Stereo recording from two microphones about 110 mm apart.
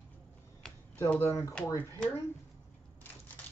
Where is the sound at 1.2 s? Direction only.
30° left (ahead or behind).